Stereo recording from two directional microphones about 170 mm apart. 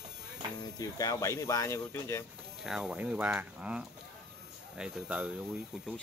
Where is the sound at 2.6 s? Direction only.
5° right (ahead or behind).